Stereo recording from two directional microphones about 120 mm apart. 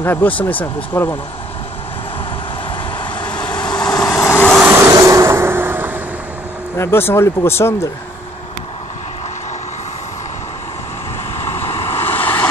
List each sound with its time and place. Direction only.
0.0 s speech: 15° left (ahead or behind)
3.0 s vehicle: 10° left (ahead or behind)
3.6 s vehicle: 35° left (ahead or behind)
4.0 s vehicle: 20° left (ahead or behind)
4.6 s vehicle: 25° right (ahead or behind)
6.8 s speech: 20° left (ahead or behind)
11.3 s vehicle: 20° left (ahead or behind)
11.7 s waves: 20° left (ahead or behind)